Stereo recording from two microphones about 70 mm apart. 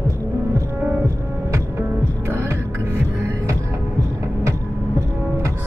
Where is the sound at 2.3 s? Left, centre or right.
Right.